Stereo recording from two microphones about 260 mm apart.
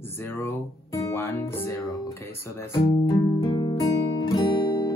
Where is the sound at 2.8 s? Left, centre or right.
Left.